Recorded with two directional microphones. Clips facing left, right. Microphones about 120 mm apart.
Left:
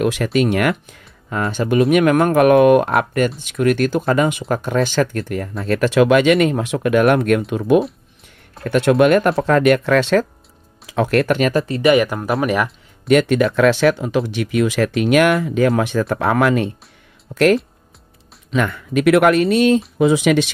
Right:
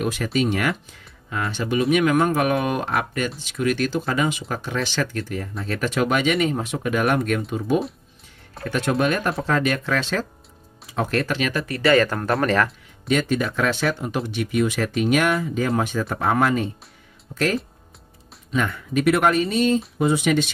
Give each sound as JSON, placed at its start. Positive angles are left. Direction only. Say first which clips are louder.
{"t": 0.0, "sound": "speech", "louder": "left 6 dB", "side_deg": 75}
{"t": 10.9, "sound": "speech", "louder": "left 7 dB", "side_deg": 80}
{"t": 11.5, "sound": "speech", "louder": "left 2 dB", "side_deg": 25}
{"t": 13.1, "sound": "speech", "louder": "left 8 dB", "side_deg": 70}
{"t": 15.0, "sound": "speech", "louder": "left 5 dB", "side_deg": 75}
{"t": 20.0, "sound": "speech", "louder": "left 5 dB", "side_deg": 90}